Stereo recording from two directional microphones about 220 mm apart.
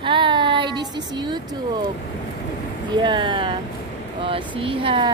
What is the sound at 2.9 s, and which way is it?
Speech, 20° right (ahead or behind).